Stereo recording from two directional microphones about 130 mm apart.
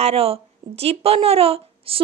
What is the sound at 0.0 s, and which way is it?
Speech, 50° right (ahead or behind).